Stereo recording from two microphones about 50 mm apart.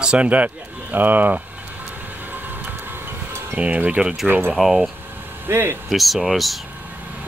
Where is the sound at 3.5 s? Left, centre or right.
Right.